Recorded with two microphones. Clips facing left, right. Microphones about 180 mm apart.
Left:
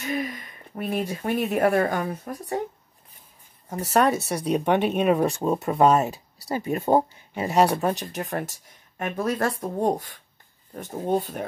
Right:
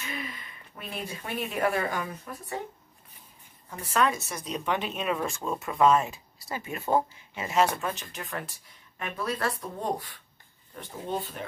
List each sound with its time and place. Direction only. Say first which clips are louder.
0.0 s speech: left 9 dB; 40° left (ahead or behind)
3.6 s speech: left 6 dB; 40° left (ahead or behind)
4.5 s speech: left 9 dB; 65° left (ahead or behind)
5.0 s speech: left 9 dB; 40° left (ahead or behind)